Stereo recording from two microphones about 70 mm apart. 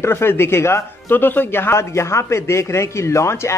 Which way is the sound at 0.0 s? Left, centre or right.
Left.